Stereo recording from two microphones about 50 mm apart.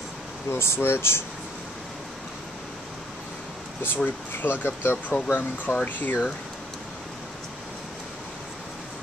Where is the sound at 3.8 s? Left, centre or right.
Left.